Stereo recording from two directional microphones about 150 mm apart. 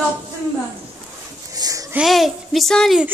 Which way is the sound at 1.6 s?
25° right (ahead or behind).